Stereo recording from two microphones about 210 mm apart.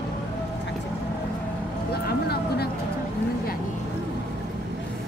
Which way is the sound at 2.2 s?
50° left (ahead or behind).